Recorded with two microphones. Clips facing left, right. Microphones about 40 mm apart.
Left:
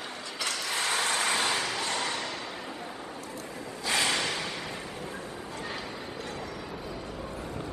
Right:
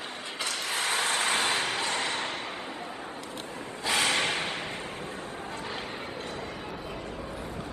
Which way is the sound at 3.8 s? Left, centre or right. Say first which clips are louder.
Right 2 dB; right.